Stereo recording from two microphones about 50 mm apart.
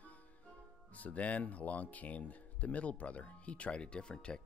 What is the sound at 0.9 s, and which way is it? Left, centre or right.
Speech, left.